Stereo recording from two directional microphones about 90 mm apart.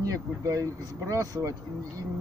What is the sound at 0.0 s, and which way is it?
Speech, 40° right (ahead or behind).